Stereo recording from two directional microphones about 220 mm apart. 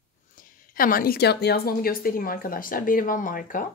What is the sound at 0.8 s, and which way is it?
A woman's voice, 40° left (ahead or behind).